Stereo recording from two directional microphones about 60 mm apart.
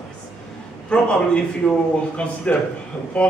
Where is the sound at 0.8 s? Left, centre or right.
Centre.